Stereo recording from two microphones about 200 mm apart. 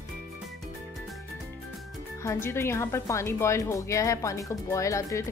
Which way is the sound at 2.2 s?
15° left (ahead or behind).